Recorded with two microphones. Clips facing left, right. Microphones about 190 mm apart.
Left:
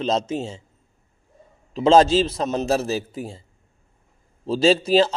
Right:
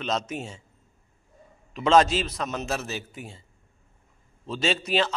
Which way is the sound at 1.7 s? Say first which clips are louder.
Left 5 dB; 30° left (ahead or behind).